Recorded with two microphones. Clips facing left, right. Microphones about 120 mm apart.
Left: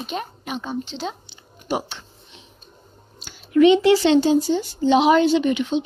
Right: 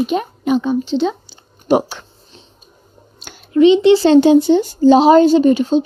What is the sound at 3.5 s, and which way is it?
Speech, 25° right (ahead or behind).